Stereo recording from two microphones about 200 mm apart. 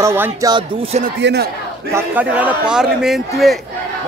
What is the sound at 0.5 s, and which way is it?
Speech, 30° right (ahead or behind).